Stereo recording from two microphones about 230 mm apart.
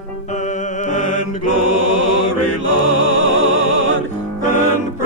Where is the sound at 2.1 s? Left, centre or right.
Right.